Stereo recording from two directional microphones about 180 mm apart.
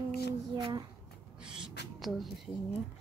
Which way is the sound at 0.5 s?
25° right (ahead or behind).